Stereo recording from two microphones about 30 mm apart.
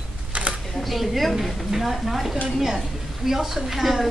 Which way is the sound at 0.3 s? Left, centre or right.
Right.